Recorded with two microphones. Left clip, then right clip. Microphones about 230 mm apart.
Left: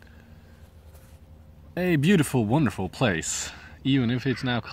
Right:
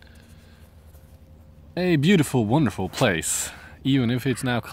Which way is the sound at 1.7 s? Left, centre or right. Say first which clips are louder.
Right 2 dB; centre.